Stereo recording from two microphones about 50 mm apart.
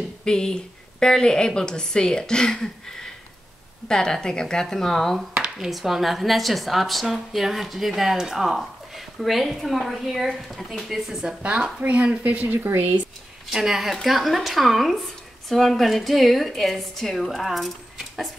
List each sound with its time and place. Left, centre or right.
0.2 s a woman's voice: centre
5.3 s a sound: centre
5.7 s a woman's voice: centre
11.1 s a woman's voice: centre; by 12.5 s right
12.5 s speech: right
13.5 s a woman's voice: centre